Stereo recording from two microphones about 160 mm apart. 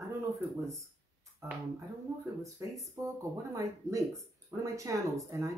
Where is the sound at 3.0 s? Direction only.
20° right (ahead or behind).